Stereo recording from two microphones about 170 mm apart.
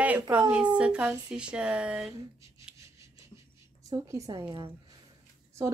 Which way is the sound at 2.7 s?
5° right (ahead or behind).